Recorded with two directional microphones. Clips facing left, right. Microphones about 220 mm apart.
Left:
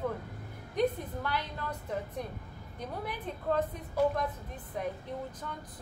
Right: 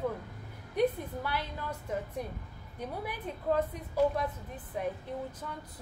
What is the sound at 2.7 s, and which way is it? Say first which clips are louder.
Speech: right 1 dB; 10° right (ahead or behind).